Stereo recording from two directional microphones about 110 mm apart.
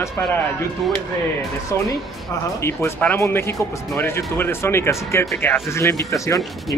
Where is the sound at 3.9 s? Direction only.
20° left (ahead or behind).